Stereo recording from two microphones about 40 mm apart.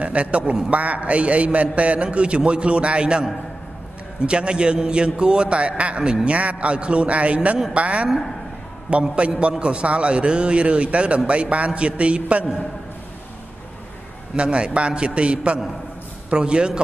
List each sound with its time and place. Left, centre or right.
0.0 s a man's voice: right
14.3 s a man's voice: right